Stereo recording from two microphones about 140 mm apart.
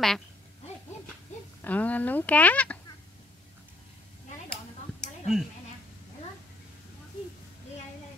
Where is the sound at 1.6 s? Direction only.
10° left (ahead or behind).